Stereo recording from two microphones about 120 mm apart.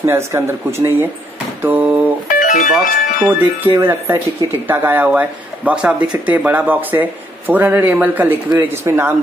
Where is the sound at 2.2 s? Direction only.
90° left.